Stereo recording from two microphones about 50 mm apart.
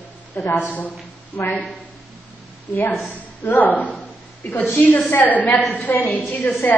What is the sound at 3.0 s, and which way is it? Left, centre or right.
A woman's voice, left.